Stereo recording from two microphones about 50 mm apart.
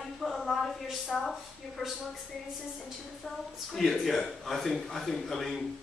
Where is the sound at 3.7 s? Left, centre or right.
Centre.